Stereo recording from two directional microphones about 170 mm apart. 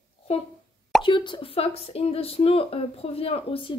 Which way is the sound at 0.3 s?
35° left (ahead or behind).